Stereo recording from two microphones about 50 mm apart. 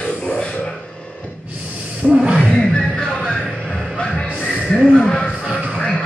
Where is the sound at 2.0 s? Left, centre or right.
Right.